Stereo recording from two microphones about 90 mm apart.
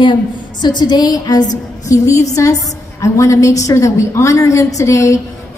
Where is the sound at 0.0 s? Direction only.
55° left (ahead or behind).